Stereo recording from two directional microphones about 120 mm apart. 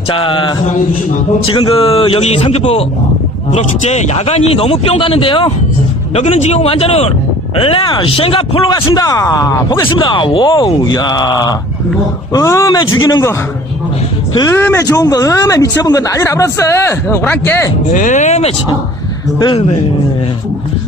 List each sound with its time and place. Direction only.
0.1 s a man's voice: 45° left (ahead or behind)
6.1 s a man's voice: 60° left (ahead or behind); by 9.6 s 30° left (ahead or behind)
9.7 s speech: 45° left (ahead or behind)
14.5 s speech: 20° left (ahead or behind)
17.9 s speech: 90° left
19.4 s a man's voice: 50° left (ahead or behind)